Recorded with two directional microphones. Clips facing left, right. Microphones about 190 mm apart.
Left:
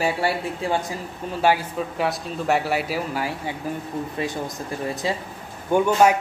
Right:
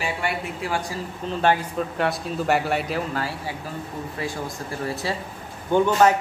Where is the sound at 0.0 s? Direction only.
30° left (ahead or behind).